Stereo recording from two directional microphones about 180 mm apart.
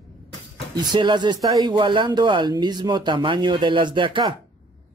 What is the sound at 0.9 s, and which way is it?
Speech, 25° right (ahead or behind).